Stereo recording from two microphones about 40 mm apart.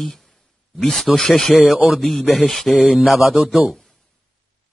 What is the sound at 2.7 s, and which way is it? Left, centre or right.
A man's voice, centre.